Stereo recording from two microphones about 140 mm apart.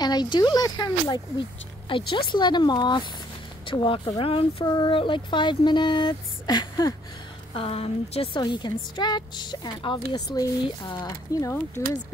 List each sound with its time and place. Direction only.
0.0 s a woman's voice: 30° left (ahead or behind)
7.5 s a woman's voice: 45° left (ahead or behind); by 11.9 s 20° left (ahead or behind)